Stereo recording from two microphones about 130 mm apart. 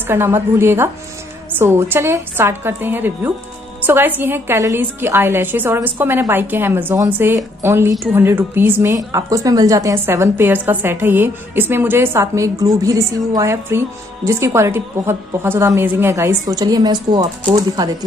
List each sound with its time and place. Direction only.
0.0 s a woman's voice: 20° right (ahead or behind)